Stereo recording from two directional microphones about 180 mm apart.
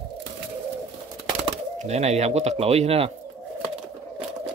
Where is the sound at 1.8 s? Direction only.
35° right (ahead or behind).